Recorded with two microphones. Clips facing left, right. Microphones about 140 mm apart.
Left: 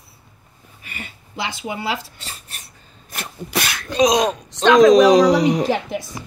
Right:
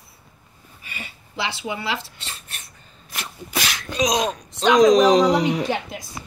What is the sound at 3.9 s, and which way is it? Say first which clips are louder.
Sneeze: left 6 dB; 30° left (ahead or behind).